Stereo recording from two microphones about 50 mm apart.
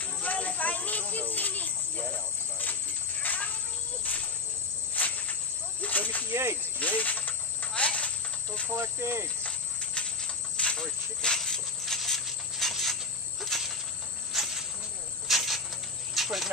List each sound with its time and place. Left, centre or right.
0.0 s snake: left
1.3 s a sound: left
4.9 s cricket: left
5.8 s snake: left
8.7 s cricket: right
9.4 s cricket: centre
12.3 s a sound: centre
13.4 s cricket: centre